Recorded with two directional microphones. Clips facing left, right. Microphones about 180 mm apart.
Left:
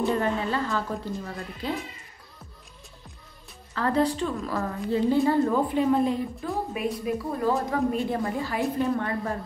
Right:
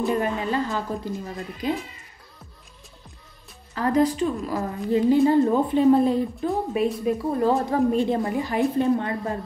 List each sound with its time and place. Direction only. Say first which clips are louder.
0.2 s a woman's voice: right 2 dB; 15° right (ahead or behind)
3.7 s a woman's voice: right 3 dB; 15° right (ahead or behind)